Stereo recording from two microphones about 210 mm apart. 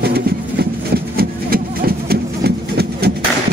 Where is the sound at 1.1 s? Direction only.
45° right (ahead or behind).